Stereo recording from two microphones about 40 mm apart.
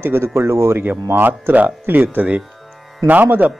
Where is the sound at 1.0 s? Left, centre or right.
Right.